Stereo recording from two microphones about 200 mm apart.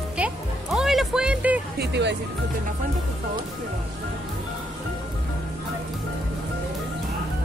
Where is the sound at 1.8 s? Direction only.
60° right (ahead or behind).